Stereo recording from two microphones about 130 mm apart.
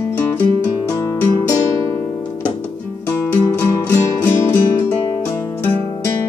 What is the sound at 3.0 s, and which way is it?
Music, 15° left (ahead or behind).